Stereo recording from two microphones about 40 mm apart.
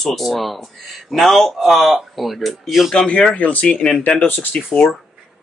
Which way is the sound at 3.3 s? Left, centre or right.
Left.